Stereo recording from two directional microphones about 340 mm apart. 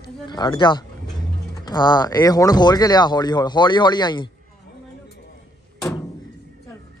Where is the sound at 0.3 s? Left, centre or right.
Centre.